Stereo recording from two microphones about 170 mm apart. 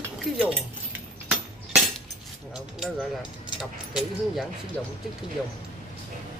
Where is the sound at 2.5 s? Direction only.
Centre (ahead or behind).